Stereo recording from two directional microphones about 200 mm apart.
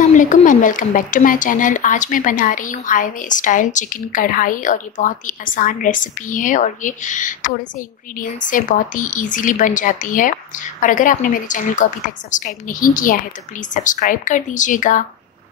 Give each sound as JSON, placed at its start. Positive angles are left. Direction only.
{"t": 0.0, "sound": "speech", "side_deg": 40}